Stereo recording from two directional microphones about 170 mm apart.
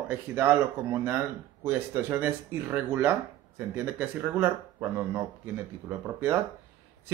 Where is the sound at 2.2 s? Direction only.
10° right (ahead or behind).